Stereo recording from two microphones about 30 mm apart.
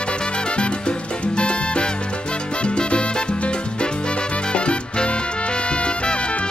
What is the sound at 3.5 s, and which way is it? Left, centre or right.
Music, left.